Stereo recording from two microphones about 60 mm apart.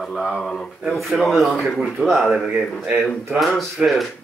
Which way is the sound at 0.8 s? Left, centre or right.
Centre.